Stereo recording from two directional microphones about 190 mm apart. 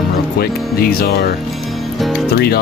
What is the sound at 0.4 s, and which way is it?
Speech, 55° left (ahead or behind).